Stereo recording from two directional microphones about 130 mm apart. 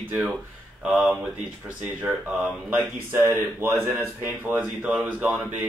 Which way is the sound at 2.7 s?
20° right (ahead or behind).